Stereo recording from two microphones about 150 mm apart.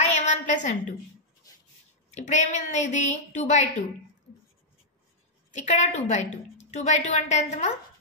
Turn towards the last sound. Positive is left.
turn(degrees=50)  # may be behind; listen again after turning